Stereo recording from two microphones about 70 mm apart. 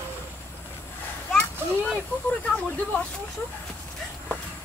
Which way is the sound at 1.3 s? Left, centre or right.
Centre.